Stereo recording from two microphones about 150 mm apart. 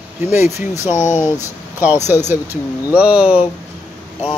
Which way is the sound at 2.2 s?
15° right (ahead or behind).